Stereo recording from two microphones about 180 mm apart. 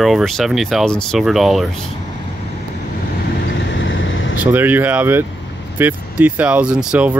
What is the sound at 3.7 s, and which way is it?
Vehicle, 90° left.